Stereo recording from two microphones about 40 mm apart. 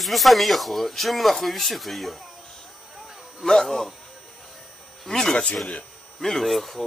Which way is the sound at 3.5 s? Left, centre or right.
Centre.